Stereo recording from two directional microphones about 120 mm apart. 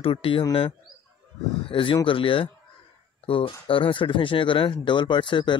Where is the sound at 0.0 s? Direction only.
50° left (ahead or behind).